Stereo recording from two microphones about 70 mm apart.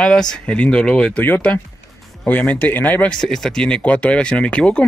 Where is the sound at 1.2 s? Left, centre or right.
Left.